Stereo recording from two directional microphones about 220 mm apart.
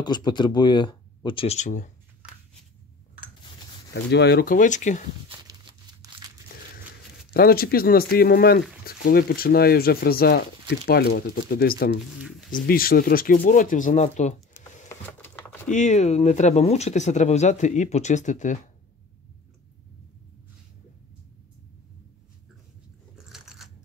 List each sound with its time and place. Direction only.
0.0 s speech: 20° left (ahead or behind)
3.9 s speech: 50° left (ahead or behind); by 5.0 s 35° left (ahead or behind)
5.5 s a sound: 20° right (ahead or behind)
7.3 s speech: 45° left (ahead or behind)
12.2 s a sound: 5° right (ahead or behind)
12.4 s speech: 40° left (ahead or behind)
14.5 s a sound: 10° left (ahead or behind)
14.9 s computer keyboard: 10° left (ahead or behind)
15.7 s speech: 30° left (ahead or behind)
23.1 s biting: centre (ahead or behind)